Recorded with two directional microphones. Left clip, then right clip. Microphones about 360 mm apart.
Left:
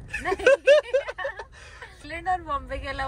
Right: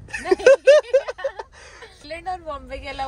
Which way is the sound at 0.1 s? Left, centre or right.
Centre.